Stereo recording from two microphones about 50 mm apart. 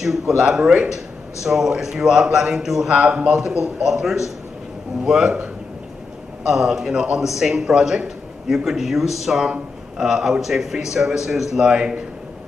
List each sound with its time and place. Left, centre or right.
0.4 s a man's voice: centre
2.9 s a man's voice: right
3.6 s a man's voice: centre
6.5 s a man's voice: centre